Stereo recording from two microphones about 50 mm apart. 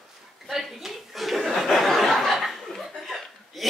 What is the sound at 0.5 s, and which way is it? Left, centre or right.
Chuckle, centre.